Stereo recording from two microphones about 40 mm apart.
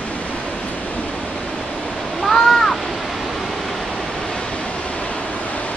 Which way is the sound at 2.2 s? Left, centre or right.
Centre.